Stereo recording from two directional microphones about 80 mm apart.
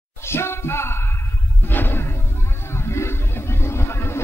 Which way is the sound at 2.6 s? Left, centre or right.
Left.